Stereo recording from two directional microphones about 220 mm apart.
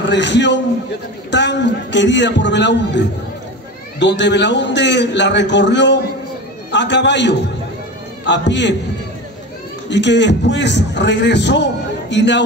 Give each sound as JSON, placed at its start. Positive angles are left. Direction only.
{"t": 0.1, "sound": "a man's voice", "side_deg": 55}
{"t": 9.8, "sound": "a man's voice", "side_deg": 55}